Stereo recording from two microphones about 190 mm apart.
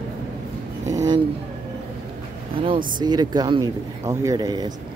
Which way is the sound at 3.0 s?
20° right (ahead or behind).